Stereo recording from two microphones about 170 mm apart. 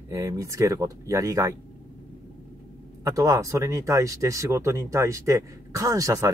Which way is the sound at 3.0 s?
20° right (ahead or behind).